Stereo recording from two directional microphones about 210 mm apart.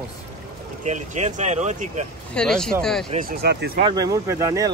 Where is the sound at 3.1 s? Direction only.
45° right (ahead or behind).